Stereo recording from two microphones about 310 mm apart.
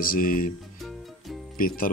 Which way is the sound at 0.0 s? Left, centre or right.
Left.